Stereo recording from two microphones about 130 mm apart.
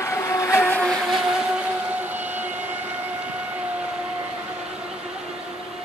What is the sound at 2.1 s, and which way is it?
Vehicle, 15° right (ahead or behind).